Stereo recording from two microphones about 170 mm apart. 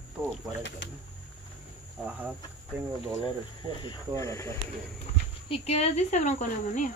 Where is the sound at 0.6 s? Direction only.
90° left.